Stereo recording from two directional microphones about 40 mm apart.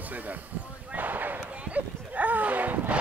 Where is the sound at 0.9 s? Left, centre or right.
Right.